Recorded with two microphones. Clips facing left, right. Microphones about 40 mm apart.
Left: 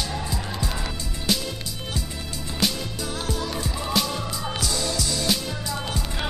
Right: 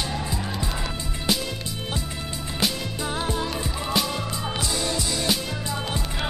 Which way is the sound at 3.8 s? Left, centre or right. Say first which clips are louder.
Even; centre.